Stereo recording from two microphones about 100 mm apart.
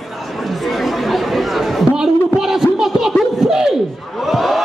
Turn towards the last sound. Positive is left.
turn(degrees=0)  # may be behind; listen again after turning